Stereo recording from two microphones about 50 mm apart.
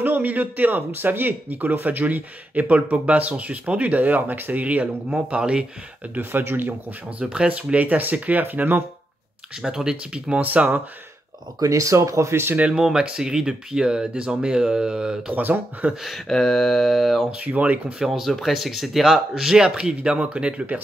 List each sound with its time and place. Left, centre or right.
0.0 s speech: right
5.4 s speech: centre
6.1 s speech: right
7.2 s speech: right
9.7 s speech: centre
10.4 s speech: right
11.7 s speech: right
12.7 s speech: centre
15.3 s speech: right
15.9 s speech: centre
16.3 s mantra: centre
17.4 s speech: right
17.9 s speech: centre